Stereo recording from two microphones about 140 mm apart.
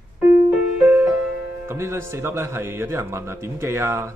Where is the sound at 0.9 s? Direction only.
10° right (ahead or behind).